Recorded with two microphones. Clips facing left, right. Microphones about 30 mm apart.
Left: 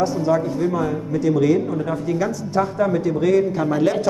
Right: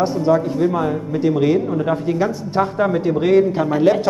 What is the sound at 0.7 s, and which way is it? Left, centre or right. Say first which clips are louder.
Speech: right 2 dB; right.